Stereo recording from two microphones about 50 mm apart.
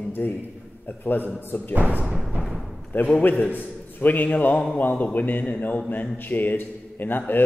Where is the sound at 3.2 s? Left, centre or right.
Left.